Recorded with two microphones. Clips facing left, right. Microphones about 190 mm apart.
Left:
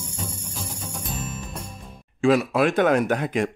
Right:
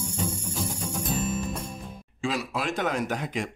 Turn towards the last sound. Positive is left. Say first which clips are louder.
# left 7 dB
turn(degrees=60)  # may be behind; listen again after turning